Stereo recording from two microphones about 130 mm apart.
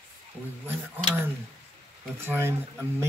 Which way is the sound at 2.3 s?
15° right (ahead or behind).